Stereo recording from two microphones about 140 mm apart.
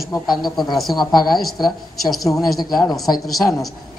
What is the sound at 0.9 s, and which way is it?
Speech, 30° left (ahead or behind).